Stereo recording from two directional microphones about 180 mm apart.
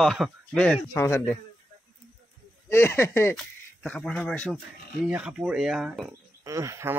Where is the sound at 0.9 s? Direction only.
15° left (ahead or behind).